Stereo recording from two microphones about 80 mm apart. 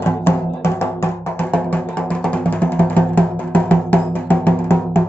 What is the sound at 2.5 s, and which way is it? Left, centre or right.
Music, left.